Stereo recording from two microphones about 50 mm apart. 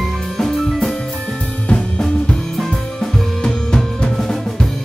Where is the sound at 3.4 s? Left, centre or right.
Centre.